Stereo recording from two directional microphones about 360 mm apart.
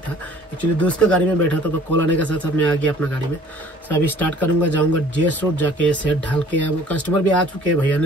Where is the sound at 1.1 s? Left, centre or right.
Right.